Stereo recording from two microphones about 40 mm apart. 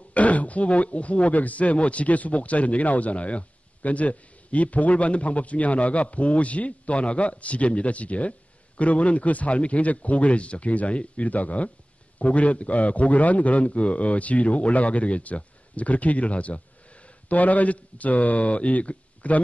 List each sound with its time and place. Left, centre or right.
0.1 s speech: left